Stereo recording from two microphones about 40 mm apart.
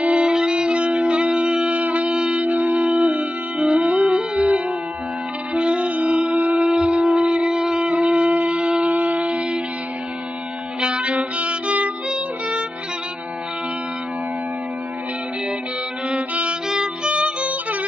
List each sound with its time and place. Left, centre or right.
0.0 s music: right
6.6 s wind instrument: centre
7.2 s shofar: right
7.8 s shofar: right
8.8 s shofar: right
10.8 s music: right
16.1 s violin: right
16.6 s music: centre